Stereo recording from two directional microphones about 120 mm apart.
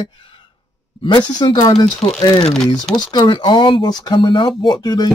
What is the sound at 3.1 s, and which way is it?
Speech, 40° left (ahead or behind).